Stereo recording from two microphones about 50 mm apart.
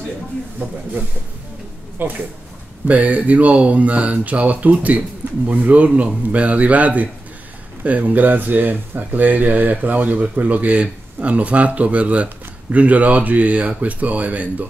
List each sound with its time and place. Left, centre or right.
2.0 s speech: right